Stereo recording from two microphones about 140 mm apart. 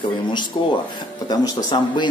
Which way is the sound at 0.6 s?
35° left (ahead or behind).